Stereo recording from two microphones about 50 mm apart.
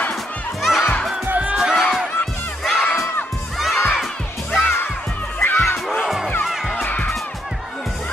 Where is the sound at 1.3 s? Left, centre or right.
Right.